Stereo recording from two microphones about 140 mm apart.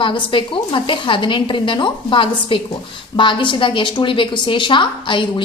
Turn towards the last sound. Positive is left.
turn(degrees=35)  # may be behind; listen again after turning